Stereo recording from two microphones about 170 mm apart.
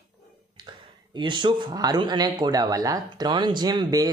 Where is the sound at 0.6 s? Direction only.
25° right (ahead or behind).